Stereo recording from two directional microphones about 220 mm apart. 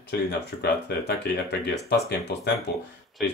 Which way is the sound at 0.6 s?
50° left (ahead or behind).